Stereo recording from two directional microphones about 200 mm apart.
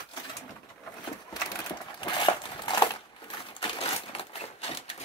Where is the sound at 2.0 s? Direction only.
20° left (ahead or behind).